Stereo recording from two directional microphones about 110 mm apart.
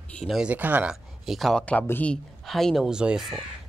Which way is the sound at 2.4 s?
Centre (ahead or behind).